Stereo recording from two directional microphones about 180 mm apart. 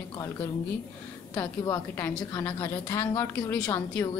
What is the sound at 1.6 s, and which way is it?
A woman's voice, 15° left (ahead or behind).